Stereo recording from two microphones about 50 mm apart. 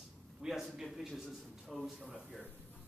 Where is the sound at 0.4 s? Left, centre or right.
Centre.